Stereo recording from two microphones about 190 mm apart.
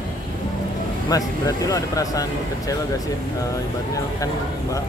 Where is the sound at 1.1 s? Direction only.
20° left (ahead or behind).